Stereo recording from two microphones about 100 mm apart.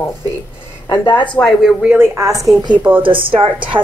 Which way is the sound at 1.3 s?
5° left (ahead or behind).